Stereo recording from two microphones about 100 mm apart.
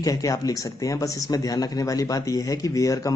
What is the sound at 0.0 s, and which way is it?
Speech, 35° left (ahead or behind).